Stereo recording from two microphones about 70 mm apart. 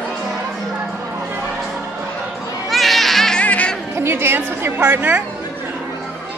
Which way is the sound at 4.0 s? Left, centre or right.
Right.